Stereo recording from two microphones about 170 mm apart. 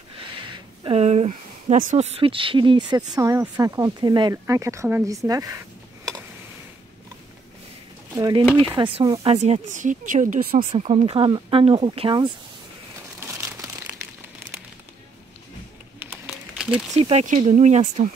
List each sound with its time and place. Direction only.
0.8 s speech: 35° right (ahead or behind); by 5.6 s 20° right (ahead or behind)
8.1 s speech: 20° right (ahead or behind)
9.4 s speech: 45° right (ahead or behind)
10.6 s speech: 30° right (ahead or behind)
13.2 s crumpling: 15° right (ahead or behind)
16.0 s a sound: 10° right (ahead or behind)
16.9 s speech: 40° right (ahead or behind)